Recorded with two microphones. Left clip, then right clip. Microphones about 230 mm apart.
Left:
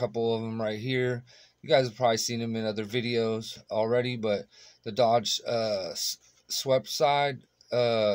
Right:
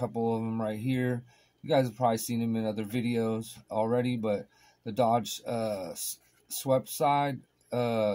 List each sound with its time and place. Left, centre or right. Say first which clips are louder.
0.0 s speech: left 3 dB; left